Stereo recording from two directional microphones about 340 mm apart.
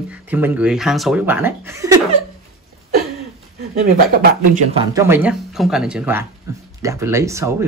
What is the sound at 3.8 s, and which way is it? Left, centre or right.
Speech, right.